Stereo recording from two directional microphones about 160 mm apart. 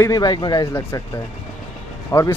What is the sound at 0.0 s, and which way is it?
Speech, 25° left (ahead or behind).